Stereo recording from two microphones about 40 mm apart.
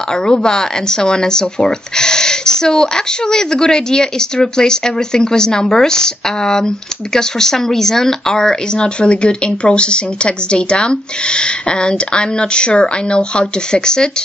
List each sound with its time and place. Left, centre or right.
0.3 s speech: centre